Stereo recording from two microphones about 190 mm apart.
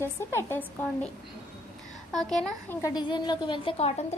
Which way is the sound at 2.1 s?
Centre (ahead or behind).